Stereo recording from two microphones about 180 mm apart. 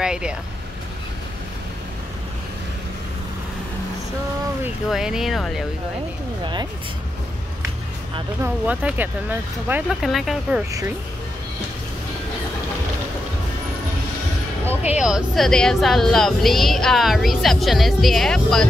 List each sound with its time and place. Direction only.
0.0 s speech: 5° right (ahead or behind)
4.8 s speech: centre (ahead or behind)
6.4 s speech: 25° right (ahead or behind)
8.4 s speech: 10° right (ahead or behind)
15.0 s speech: 5° right (ahead or behind)